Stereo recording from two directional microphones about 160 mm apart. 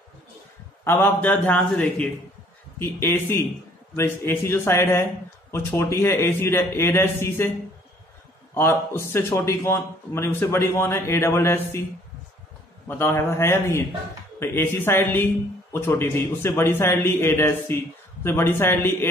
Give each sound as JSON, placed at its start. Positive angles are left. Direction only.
{"t": 0.8, "sound": "speech", "side_deg": 15}
{"t": 8.5, "sound": "speech", "side_deg": 15}
{"t": 12.8, "sound": "speech", "side_deg": 15}